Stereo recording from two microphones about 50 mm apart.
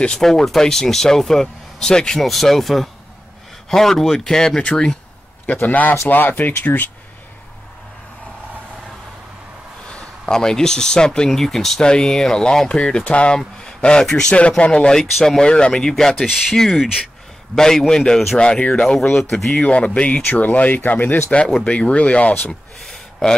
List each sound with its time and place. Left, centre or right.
0.2 s speech: centre
2.2 s speech: centre
5.7 s speech: left
9.8 s speech: centre
18.4 s speech: left
18.8 s speech: centre
19.6 s speech: left
21.6 s speech: left
22.4 s a sound: centre